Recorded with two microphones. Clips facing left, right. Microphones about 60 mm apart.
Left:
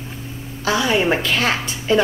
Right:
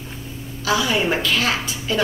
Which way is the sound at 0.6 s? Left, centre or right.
Left.